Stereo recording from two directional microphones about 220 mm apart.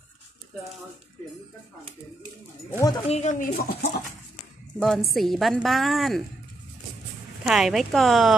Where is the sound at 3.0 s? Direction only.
30° left (ahead or behind).